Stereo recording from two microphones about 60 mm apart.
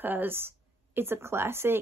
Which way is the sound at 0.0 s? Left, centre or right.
Right.